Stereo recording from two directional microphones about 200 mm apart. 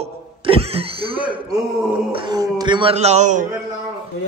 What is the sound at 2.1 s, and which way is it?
Speech, 20° right (ahead or behind).